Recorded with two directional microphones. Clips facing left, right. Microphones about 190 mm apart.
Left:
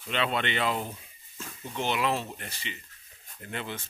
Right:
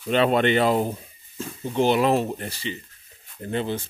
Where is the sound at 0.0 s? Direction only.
40° right (ahead or behind).